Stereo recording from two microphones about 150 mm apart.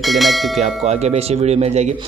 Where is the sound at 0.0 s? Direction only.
Centre (ahead or behind).